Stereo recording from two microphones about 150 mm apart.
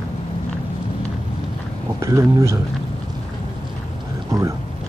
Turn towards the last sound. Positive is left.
turn(degrees=-20)  # may be behind; listen again after turning